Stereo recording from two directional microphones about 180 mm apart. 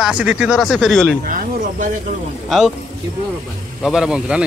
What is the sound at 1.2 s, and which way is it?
Speech, 50° right (ahead or behind).